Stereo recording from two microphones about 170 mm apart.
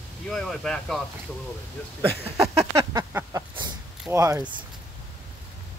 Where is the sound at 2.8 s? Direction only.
20° right (ahead or behind).